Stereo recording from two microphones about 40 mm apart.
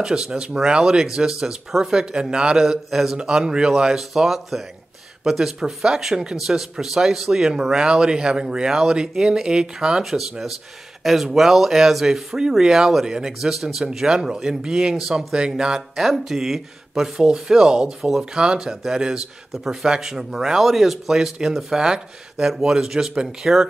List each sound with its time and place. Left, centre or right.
0.0 s speech: centre
4.1 s speech: centre
11.1 s speech: centre
16.0 s speech: centre